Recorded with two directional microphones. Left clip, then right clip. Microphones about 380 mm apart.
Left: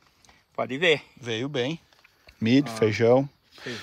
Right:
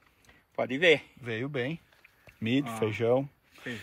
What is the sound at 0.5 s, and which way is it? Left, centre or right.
Speech, left.